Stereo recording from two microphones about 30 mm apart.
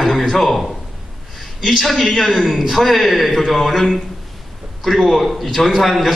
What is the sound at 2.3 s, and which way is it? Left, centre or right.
Speech, centre.